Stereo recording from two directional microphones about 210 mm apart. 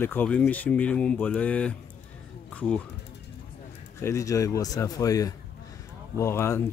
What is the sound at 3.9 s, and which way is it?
Speech, 15° left (ahead or behind).